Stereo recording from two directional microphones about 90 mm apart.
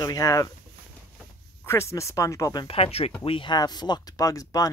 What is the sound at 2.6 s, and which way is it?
Speech, 90° left.